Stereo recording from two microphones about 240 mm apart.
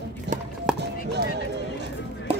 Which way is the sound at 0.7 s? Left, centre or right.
Centre.